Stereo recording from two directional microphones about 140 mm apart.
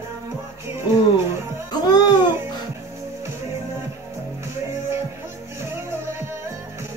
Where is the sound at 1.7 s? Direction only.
30° left (ahead or behind).